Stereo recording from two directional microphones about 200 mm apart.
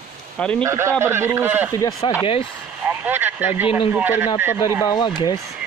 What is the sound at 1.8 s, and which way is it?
Speech, 20° left (ahead or behind).